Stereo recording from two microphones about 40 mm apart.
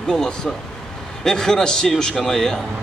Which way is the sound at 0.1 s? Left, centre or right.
Centre.